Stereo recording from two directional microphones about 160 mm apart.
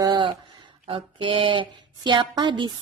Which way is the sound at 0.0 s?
30° right (ahead or behind).